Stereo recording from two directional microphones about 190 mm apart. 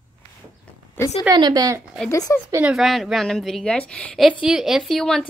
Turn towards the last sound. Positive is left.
turn(degrees=0)  # may be behind; listen again after turning